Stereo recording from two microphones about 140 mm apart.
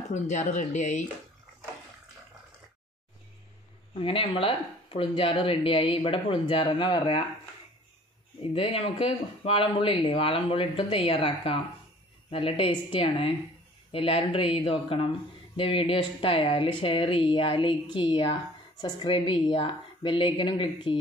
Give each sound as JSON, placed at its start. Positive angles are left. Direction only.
{"t": 0.1, "sound": "speech", "side_deg": 55}
{"t": 3.9, "sound": "speech", "side_deg": 40}
{"t": 8.5, "sound": "speech", "side_deg": 40}